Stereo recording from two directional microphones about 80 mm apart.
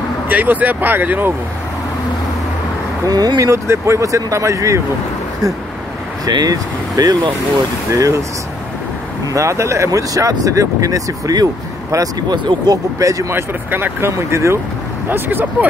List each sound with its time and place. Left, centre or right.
0.3 s speech: right
3.1 s speech: right
3.4 s speech: right
6.2 s speech: right
7.9 s speech: right
9.3 s speech: right
13.3 s speech: right
14.1 s speech: right
15.0 s speech: right